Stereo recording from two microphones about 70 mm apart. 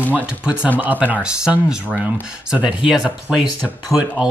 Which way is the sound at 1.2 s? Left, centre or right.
Centre.